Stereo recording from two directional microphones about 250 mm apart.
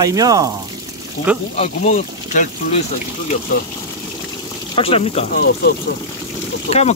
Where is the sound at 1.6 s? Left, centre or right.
Left.